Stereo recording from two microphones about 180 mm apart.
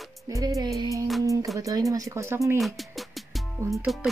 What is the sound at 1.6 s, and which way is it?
Speech, 20° right (ahead or behind).